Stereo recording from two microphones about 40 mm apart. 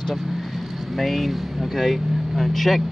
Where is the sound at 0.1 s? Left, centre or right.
Centre.